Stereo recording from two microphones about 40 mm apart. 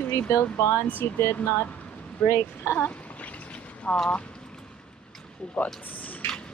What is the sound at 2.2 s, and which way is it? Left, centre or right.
Speech, left.